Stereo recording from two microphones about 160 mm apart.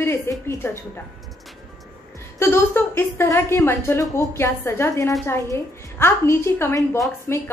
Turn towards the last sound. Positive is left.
turn(degrees=15)  # may be behind; listen again after turning